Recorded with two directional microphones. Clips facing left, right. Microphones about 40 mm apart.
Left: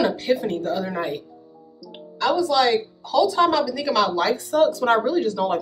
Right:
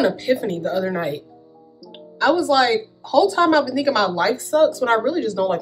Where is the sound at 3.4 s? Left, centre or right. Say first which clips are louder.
Right 4 dB; centre.